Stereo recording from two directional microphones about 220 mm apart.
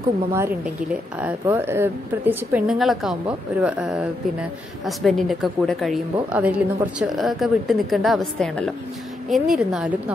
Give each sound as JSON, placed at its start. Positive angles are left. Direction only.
{"t": 0.3, "sound": "a woman's voice", "side_deg": -10}